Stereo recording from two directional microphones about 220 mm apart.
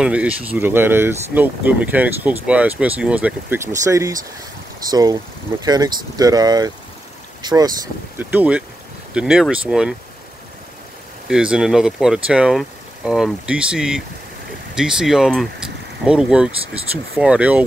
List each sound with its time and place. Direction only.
0.0 s speech: 5° right (ahead or behind)
11.2 s speech: 5° right (ahead or behind)